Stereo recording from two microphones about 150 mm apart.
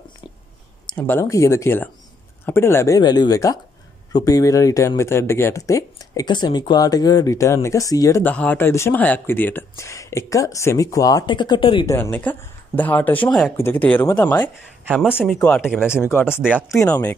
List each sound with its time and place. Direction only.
0.8 s speech: 10° left (ahead or behind)
8.2 s speech: 10° left (ahead or behind); by 11.8 s 30° left (ahead or behind)
11.8 s speech: 15° left (ahead or behind)
15.7 s speech: 5° right (ahead or behind)
16.0 s speech: 15° left (ahead or behind)